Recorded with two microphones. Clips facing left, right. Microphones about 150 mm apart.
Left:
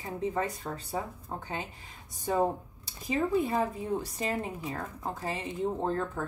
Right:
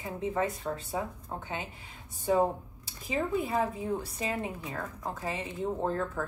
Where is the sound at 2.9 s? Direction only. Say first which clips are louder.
Left 2 dB; 40° left (ahead or behind).